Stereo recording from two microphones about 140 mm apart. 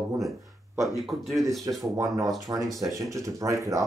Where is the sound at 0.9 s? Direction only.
Centre (ahead or behind).